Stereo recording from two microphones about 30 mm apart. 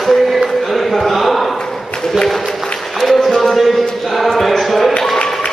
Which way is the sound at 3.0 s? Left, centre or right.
Centre.